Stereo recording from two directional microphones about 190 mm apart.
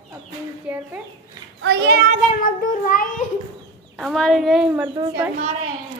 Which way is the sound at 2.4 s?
45° left (ahead or behind).